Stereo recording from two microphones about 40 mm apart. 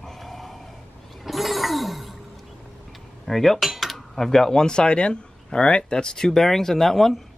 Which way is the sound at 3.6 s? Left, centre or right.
Centre.